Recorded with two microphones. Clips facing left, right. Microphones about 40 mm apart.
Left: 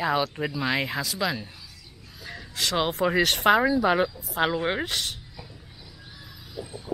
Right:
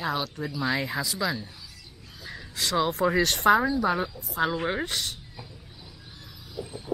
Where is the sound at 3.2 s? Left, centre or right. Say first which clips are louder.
Left 1 dB; centre.